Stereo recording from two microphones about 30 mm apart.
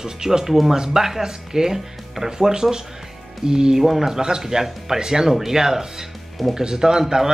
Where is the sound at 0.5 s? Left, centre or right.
Centre.